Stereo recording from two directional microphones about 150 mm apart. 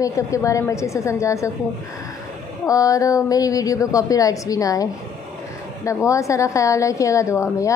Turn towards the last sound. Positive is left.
turn(degrees=20)  # may be behind; listen again after turning